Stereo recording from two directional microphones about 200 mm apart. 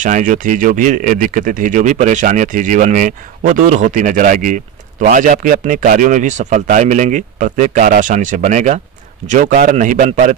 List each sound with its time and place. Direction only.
0.0 s speech: 40° right (ahead or behind)